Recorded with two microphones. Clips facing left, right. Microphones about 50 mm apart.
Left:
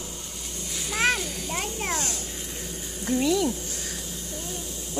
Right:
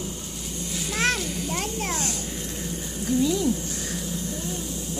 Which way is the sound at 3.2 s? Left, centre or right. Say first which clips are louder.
Left 1 dB; left.